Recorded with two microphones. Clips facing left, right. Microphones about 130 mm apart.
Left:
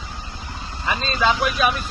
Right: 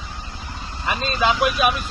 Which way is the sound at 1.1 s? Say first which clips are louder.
Right 1 dB; 15° right (ahead or behind).